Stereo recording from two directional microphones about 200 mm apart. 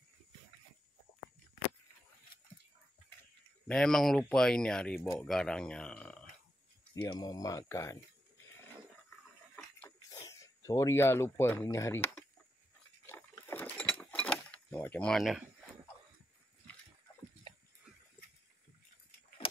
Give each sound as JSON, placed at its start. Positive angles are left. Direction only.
{"t": 3.6, "sound": "speech", "side_deg": 5}
{"t": 7.1, "sound": "speech", "side_deg": 20}
{"t": 9.6, "sound": "a sound", "side_deg": 10}
{"t": 13.0, "sound": "mechanisms", "side_deg": 10}
{"t": 19.4, "sound": "vehicle", "side_deg": 25}